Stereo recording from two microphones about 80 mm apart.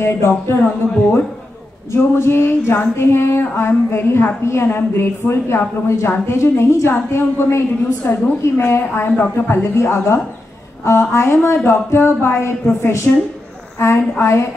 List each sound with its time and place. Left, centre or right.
0.0 s a woman's voice: left
1.9 s a woman's voice: left